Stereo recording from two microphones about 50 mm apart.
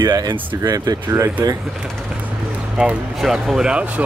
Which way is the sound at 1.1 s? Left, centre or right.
Right.